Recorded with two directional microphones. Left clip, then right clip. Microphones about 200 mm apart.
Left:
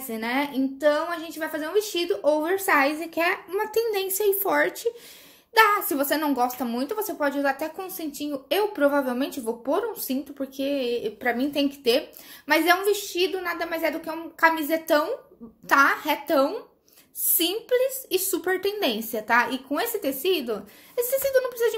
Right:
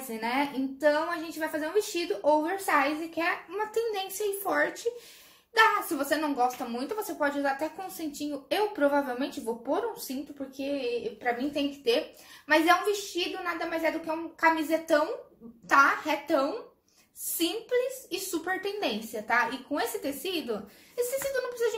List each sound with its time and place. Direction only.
0.1 s a woman's voice: 25° left (ahead or behind); by 21.7 s 40° left (ahead or behind)